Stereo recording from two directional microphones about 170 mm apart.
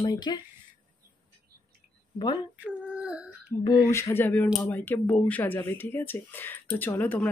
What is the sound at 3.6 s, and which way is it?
Speech, 15° left (ahead or behind).